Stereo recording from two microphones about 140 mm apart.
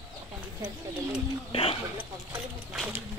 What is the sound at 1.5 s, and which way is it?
Speech, 40° left (ahead or behind).